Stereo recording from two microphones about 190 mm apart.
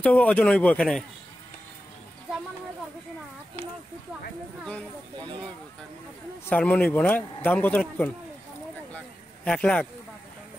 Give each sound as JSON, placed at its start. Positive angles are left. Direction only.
{"t": 0.0, "sound": "a man's voice", "side_deg": 5}
{"t": 6.4, "sound": "a man's voice", "side_deg": 10}
{"t": 8.9, "sound": "a sound", "side_deg": 5}